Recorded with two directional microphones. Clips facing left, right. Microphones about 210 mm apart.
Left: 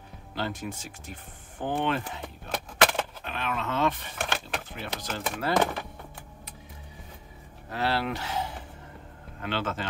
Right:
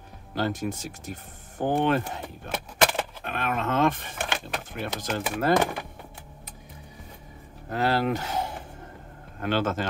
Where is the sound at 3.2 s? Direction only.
50° right (ahead or behind).